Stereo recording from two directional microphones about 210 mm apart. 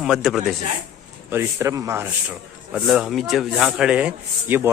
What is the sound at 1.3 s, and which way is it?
Speech, 10° right (ahead or behind).